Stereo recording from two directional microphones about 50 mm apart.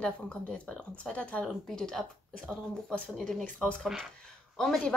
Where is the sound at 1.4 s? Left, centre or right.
Centre.